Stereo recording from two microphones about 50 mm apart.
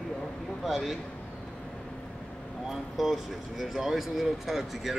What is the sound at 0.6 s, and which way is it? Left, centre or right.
Speech, centre.